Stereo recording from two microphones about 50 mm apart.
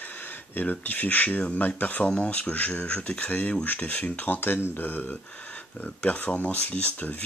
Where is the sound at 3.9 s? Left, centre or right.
Left.